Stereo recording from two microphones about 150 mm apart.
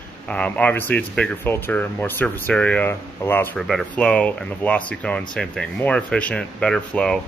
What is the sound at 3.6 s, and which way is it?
Speech, centre (ahead or behind).